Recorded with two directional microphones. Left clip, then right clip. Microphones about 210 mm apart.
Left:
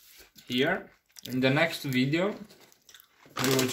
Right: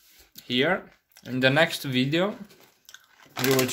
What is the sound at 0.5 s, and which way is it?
Speech, 45° right (ahead or behind).